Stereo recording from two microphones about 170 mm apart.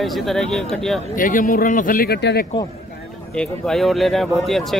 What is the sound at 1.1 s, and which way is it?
Speech, 55° left (ahead or behind).